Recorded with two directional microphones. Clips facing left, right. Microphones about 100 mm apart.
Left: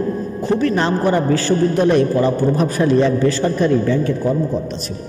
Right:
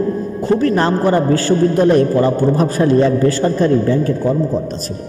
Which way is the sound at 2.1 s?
30° right (ahead or behind).